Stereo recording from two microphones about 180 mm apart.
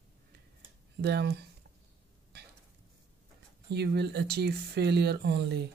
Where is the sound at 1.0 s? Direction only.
65° right (ahead or behind).